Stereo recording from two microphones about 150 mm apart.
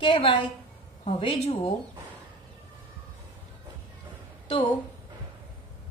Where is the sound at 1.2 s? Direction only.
45° left (ahead or behind).